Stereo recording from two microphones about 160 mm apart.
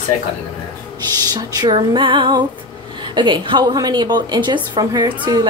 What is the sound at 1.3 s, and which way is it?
A woman's voice, 25° right (ahead or behind).